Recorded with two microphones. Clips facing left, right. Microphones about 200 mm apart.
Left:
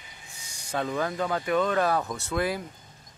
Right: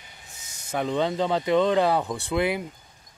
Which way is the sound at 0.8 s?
20° right (ahead or behind).